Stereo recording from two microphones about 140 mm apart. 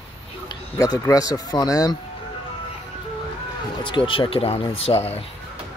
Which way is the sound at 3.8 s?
35° left (ahead or behind).